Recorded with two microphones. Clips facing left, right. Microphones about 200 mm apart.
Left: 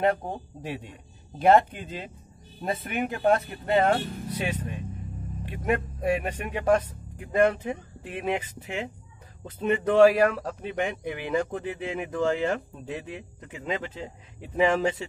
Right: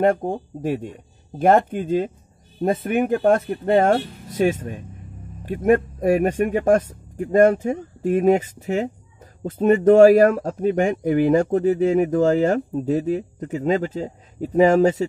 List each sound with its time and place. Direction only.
0.0 s a man's voice: 45° right (ahead or behind)